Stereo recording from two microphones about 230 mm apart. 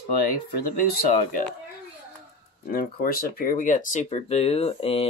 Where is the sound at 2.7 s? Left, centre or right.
Left.